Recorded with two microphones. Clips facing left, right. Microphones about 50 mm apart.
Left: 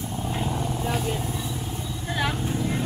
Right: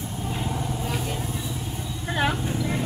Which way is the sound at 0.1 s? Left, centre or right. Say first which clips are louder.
Left 2 dB; centre.